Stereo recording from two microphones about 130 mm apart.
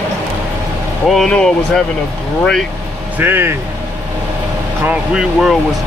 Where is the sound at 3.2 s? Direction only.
15° right (ahead or behind).